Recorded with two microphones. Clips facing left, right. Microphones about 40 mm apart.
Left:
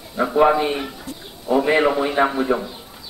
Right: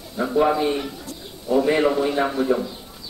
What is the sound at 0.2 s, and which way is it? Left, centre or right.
Speech, left.